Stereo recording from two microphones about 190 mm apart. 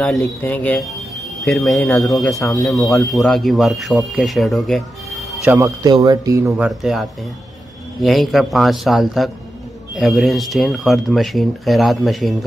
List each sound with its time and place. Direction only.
0.2 s speech: 10° left (ahead or behind)
5.4 s speech: 10° right (ahead or behind)
5.8 s speech: 20° right (ahead or behind); by 12.4 s centre (ahead or behind)